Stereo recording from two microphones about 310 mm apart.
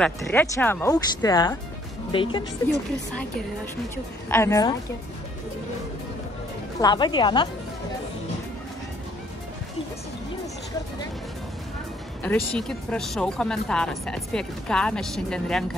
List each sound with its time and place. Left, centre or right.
0.0 s speech: centre
4.3 s speech: centre
6.8 s speech: centre
12.2 s speech: centre